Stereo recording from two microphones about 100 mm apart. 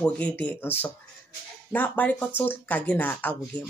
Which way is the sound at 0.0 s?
15° left (ahead or behind).